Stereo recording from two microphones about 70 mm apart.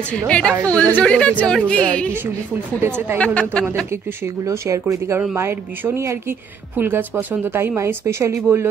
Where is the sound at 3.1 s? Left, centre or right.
Centre.